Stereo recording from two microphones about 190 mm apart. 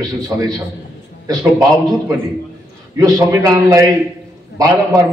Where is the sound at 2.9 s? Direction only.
20° right (ahead or behind).